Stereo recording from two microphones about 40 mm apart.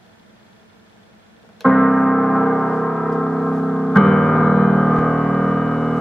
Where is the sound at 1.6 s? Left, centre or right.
Centre.